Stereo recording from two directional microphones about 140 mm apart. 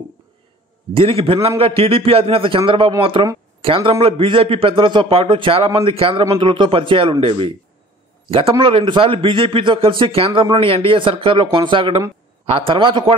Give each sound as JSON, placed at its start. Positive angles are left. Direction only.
{"t": 0.9, "sound": "a man's voice", "side_deg": -40}